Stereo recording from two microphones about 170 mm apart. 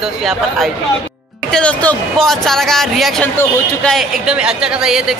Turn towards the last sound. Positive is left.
turn(degrees=-5)  # may be behind; listen again after turning